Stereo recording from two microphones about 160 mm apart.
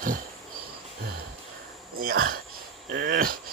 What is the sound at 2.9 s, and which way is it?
Speech, 90° right.